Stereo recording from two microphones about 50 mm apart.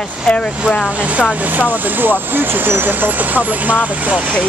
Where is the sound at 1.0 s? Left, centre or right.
Right.